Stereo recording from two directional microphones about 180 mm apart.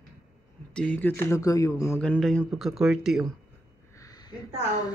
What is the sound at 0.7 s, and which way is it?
Speech, 10° left (ahead or behind).